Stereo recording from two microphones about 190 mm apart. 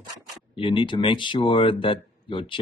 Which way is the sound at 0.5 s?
25° left (ahead or behind).